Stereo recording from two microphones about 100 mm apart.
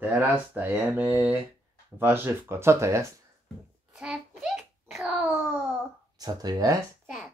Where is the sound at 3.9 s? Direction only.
5° right (ahead or behind).